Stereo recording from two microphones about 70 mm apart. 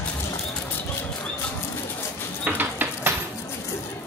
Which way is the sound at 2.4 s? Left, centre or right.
Right.